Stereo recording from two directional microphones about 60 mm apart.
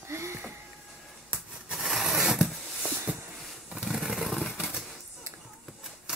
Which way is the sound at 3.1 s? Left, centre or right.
Right.